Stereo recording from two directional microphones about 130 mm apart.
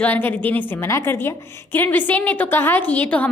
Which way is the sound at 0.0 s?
15° left (ahead or behind).